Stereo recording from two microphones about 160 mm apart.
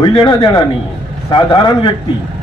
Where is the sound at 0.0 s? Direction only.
30° left (ahead or behind).